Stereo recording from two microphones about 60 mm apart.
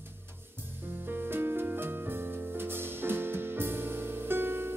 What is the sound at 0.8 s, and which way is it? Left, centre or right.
Music, right.